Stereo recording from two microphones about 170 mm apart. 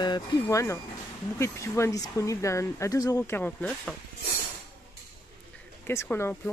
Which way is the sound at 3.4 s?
10° left (ahead or behind).